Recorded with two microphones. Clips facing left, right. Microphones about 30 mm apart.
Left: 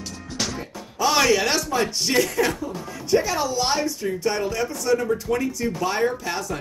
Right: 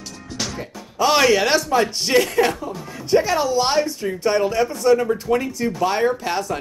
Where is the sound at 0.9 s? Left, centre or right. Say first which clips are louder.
Right 3 dB; right.